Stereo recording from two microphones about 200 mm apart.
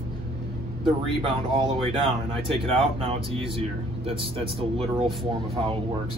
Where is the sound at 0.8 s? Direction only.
25° right (ahead or behind).